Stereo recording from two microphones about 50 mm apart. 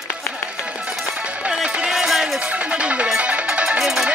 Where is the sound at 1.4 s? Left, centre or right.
Right.